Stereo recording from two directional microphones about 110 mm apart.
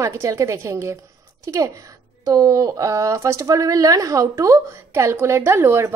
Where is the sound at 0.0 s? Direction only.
25° right (ahead or behind).